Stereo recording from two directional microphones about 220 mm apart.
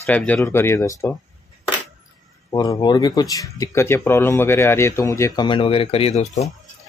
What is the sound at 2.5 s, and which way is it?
Speech, 20° left (ahead or behind).